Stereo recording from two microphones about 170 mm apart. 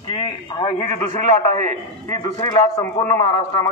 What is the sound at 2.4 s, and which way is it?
A man's voice, 20° left (ahead or behind).